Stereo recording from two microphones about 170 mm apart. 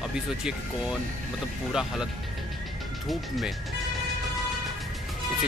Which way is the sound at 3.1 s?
Centre (ahead or behind).